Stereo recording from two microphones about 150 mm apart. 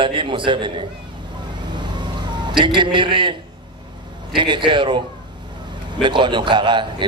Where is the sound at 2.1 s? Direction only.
30° right (ahead or behind).